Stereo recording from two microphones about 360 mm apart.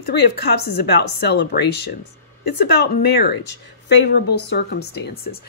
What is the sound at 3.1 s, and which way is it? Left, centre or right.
Speech, left.